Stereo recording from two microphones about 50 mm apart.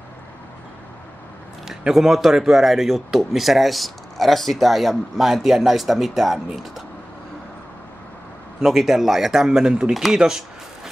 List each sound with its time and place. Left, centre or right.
1.7 s speech: centre
8.5 s speech: centre
9.6 s speech: centre